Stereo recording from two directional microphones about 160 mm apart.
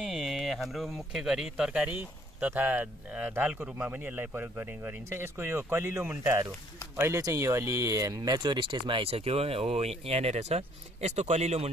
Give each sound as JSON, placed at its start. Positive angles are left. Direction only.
{"t": 0.0, "sound": "speech", "side_deg": 0}